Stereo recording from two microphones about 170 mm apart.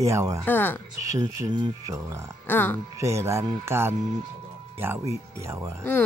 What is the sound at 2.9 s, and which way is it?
Speech, 15° right (ahead or behind).